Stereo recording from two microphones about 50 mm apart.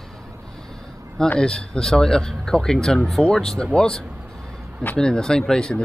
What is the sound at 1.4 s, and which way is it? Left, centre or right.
Speech, centre.